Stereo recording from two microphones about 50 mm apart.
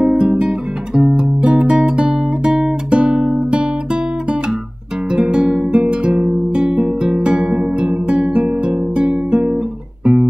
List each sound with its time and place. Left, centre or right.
0.0 s guitar: centre
5.1 s music: centre